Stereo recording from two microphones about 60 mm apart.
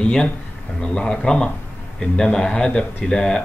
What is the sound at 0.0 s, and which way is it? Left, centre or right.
A man's voice, centre.